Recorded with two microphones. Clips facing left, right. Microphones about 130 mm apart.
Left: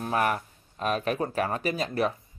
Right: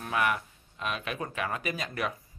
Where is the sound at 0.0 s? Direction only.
40° left (ahead or behind).